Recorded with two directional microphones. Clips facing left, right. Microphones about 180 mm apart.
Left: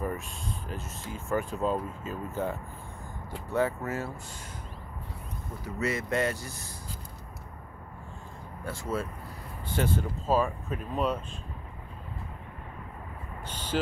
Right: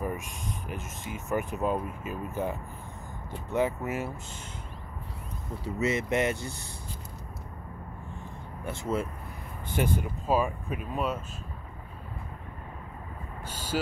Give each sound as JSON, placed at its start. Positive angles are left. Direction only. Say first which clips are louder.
{"t": 0.0, "sound": "speech", "louder": "even", "side_deg": -15}
{"t": 5.6, "sound": "speech", "louder": "right 3 dB", "side_deg": -25}
{"t": 8.6, "sound": "speech", "louder": "right 2 dB", "side_deg": -20}
{"t": 13.5, "sound": "a sound", "louder": "left 1 dB", "side_deg": -10}